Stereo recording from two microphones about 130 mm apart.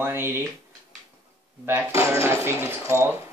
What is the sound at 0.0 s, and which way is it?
Speech, 15° right (ahead or behind).